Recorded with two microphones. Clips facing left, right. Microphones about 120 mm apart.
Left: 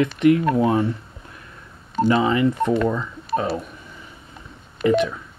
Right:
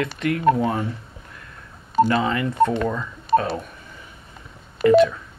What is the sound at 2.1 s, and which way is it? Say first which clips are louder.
Speech: left 4 dB; 20° left (ahead or behind).